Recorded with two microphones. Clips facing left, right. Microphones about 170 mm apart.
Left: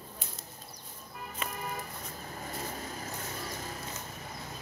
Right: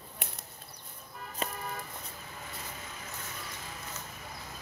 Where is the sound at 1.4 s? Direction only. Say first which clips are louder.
Right 3 dB; 35° right (ahead or behind).